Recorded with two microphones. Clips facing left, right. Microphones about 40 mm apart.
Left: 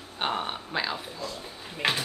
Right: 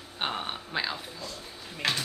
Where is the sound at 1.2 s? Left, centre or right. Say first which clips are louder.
Left 4 dB; centre.